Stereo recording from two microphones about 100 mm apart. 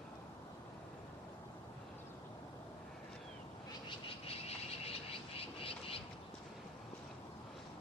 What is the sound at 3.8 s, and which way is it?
Frog, 70° left (ahead or behind).